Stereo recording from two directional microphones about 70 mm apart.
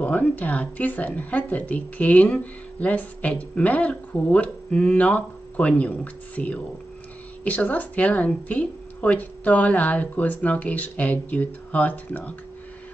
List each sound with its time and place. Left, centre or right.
0.0 s a woman's voice: left